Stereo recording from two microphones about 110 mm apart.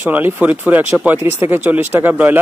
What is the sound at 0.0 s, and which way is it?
Speech, 20° right (ahead or behind).